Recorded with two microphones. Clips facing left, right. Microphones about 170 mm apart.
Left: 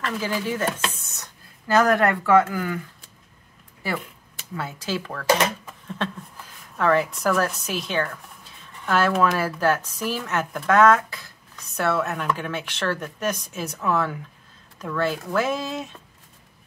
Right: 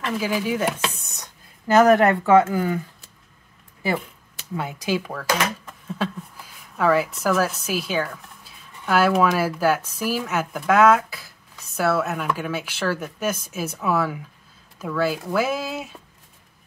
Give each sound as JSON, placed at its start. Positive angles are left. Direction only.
{"t": 0.0, "sound": "speech", "side_deg": -10}
{"t": 4.6, "sound": "a woman's voice", "side_deg": -15}